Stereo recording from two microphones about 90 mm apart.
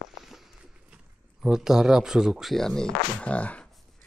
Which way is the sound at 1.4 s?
5° right (ahead or behind).